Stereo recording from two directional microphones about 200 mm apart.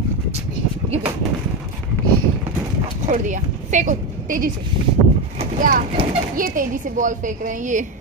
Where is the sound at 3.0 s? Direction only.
40° right (ahead or behind).